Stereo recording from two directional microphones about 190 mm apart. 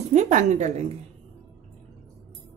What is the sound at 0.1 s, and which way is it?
Speech, 40° right (ahead or behind).